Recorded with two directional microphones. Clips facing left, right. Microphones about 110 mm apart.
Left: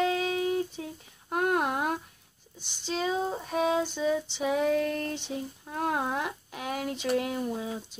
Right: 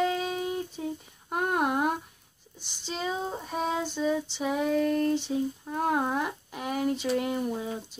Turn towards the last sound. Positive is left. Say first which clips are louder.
# right 1 dB
turn(degrees=0)  # may be behind; listen again after turning